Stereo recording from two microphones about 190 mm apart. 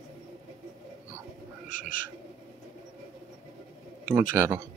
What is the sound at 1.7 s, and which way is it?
Bird, 45° left (ahead or behind).